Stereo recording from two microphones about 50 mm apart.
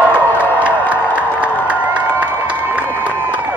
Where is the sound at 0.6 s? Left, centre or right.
Right.